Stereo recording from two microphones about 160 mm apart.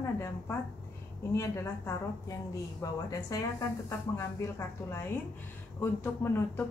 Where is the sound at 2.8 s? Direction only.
20° left (ahead or behind).